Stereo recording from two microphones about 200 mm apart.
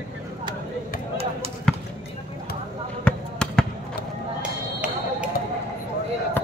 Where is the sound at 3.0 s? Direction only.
5° left (ahead or behind).